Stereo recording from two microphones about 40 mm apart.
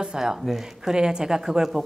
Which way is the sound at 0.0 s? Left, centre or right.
Centre.